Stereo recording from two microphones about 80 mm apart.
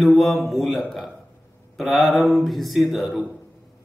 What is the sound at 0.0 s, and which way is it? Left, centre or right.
Speech, centre.